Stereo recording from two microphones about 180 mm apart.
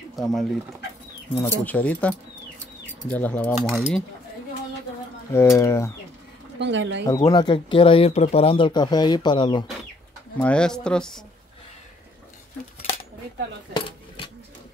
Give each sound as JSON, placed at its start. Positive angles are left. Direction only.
{"t": 0.1, "sound": "speech", "side_deg": 0}
{"t": 5.3, "sound": "speech", "side_deg": 15}
{"t": 6.6, "sound": "speech", "side_deg": -90}
{"t": 7.2, "sound": "speech", "side_deg": 25}
{"t": 10.4, "sound": "speech", "side_deg": 5}
{"t": 13.7, "sound": "cutlery", "side_deg": 30}